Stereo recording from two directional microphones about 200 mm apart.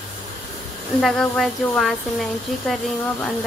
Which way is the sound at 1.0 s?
Centre (ahead or behind).